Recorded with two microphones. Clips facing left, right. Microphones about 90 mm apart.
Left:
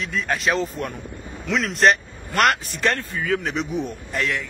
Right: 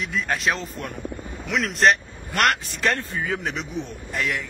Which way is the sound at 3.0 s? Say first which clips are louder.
Left 3 dB; 20° right (ahead or behind).